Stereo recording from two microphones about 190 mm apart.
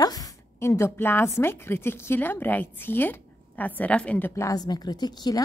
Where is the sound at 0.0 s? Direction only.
20° left (ahead or behind).